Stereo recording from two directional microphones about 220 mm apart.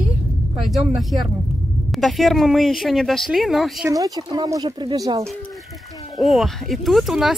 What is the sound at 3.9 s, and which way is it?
Speech, 15° right (ahead or behind).